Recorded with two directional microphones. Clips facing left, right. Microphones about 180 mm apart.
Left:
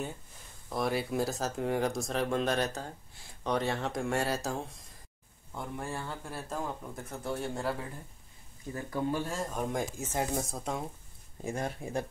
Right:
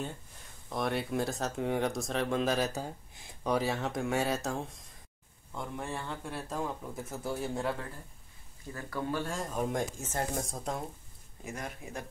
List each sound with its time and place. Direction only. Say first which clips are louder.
0.7 s speech: left 1 dB; centre (ahead or behind)
8.7 s speech: left 2 dB; 15° left (ahead or behind)
9.3 s speech: even; centre (ahead or behind)
11.4 s speech: left 6 dB; 30° left (ahead or behind)